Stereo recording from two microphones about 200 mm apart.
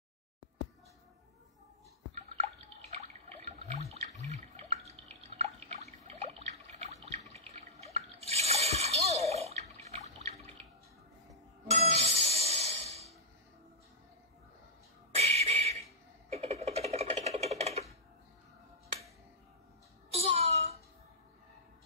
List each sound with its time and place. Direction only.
2.9 s water: 30° right (ahead or behind)
11.7 s music: 30° right (ahead or behind)
15.1 s a sound: 30° right (ahead or behind)
20.1 s music: 30° right (ahead or behind)